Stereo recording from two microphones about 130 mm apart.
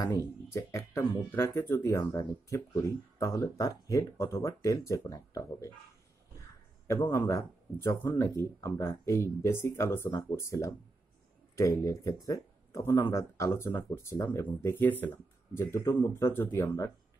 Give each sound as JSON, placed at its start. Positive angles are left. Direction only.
{"t": 0.5, "sound": "speech", "side_deg": 25}
{"t": 6.9, "sound": "speech", "side_deg": 25}